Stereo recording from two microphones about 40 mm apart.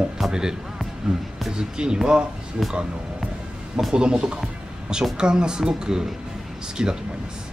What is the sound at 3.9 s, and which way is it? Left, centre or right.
Speech, right.